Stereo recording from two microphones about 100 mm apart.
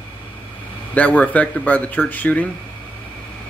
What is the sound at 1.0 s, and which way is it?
Speech, 15° left (ahead or behind).